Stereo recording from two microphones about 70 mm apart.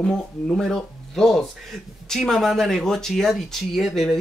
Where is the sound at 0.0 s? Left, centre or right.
Centre.